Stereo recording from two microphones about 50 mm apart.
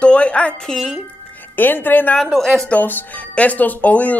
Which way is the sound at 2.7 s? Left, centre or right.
Left.